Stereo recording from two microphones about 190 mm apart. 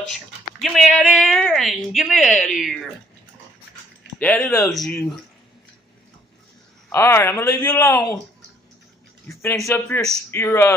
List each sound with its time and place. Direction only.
0.6 s a woman's voice: centre (ahead or behind)
4.2 s a woman's voice: 10° left (ahead or behind)
6.9 s speech: 10° left (ahead or behind)
9.3 s speech: 15° left (ahead or behind)